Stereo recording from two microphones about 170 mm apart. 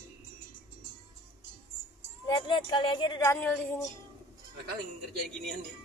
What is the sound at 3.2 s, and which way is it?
Speech, 10° left (ahead or behind).